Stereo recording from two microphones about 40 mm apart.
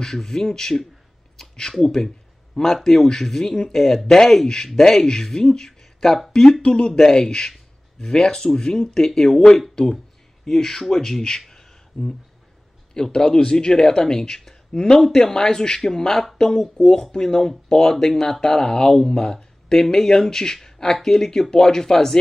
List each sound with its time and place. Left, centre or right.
0.0 s speech: centre
6.6 s speech: left
6.9 s speech: centre
10.4 s speech: centre